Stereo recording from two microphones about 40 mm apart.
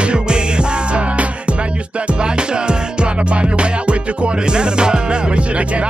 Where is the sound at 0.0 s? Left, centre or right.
Right.